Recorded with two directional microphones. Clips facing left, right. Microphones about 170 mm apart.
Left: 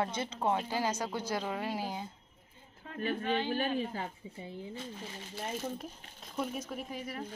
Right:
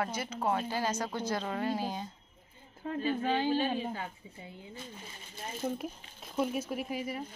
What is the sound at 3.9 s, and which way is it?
Speech, 30° left (ahead or behind).